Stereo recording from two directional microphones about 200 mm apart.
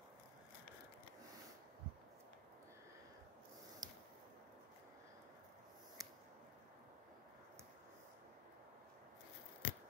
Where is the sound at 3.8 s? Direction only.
20° right (ahead or behind).